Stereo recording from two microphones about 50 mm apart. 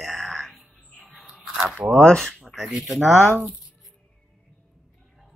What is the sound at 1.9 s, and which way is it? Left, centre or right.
Speech, centre.